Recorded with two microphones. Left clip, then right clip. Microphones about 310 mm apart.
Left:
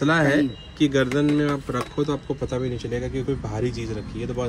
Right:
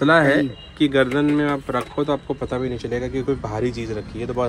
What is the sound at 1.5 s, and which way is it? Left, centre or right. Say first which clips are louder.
Speech: right 3 dB; centre.